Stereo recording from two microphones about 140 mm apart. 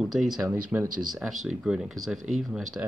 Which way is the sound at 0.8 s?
75° right (ahead or behind).